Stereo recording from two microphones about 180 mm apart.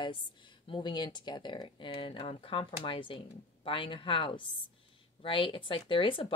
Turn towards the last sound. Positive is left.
turn(degrees=30)  # may be behind; listen again after turning